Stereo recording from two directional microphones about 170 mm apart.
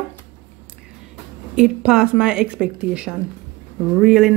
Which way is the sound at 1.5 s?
5° right (ahead or behind).